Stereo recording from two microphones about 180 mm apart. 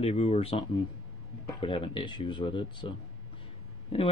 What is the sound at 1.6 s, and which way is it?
Speech, 30° left (ahead or behind).